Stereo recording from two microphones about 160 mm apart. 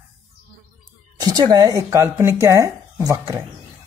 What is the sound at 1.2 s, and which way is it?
A woman's voice, 25° right (ahead or behind).